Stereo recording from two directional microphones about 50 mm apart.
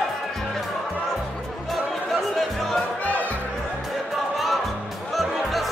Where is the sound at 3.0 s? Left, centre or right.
Left.